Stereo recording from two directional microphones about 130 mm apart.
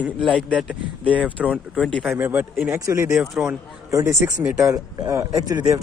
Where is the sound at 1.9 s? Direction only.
5° left (ahead or behind).